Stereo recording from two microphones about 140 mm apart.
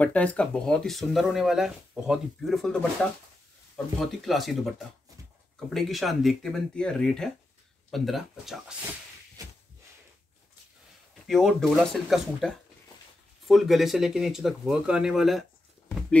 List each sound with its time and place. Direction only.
0.0 s speech: 10° left (ahead or behind)
5.7 s speech: centre (ahead or behind)
9.4 s a sound: 25° right (ahead or behind)
11.2 s speech: centre (ahead or behind)